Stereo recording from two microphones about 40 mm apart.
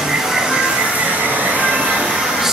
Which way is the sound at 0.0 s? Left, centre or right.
Centre.